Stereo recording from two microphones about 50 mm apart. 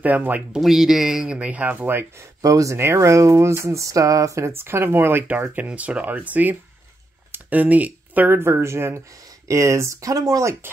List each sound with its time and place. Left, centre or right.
0.0 s speech: right
0.6 s speech: centre
1.4 s speech: right
2.1 s speech: right
4.6 s speech: right
5.7 s speech: right
7.3 s a sound: right
8.3 s speech: right
9.5 s speech: right